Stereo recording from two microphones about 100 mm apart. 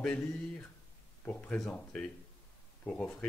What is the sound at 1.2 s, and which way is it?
Speech, 10° left (ahead or behind).